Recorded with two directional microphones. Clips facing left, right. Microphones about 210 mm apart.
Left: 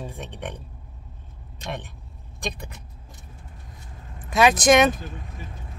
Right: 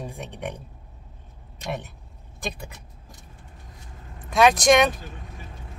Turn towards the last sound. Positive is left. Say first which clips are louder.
# left 1 dB
turn(degrees=0)  # may be behind; listen again after turning